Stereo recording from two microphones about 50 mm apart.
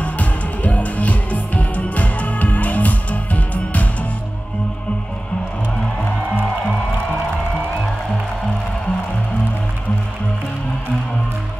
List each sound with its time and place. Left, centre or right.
0.0 s music: left